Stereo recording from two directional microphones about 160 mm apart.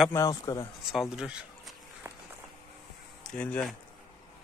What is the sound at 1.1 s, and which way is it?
Speech, 5° right (ahead or behind).